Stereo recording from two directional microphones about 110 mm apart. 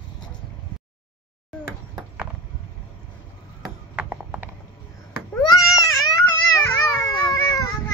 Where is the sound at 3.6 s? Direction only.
10° right (ahead or behind).